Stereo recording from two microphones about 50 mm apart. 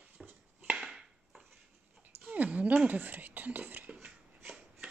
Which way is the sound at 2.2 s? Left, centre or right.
Right.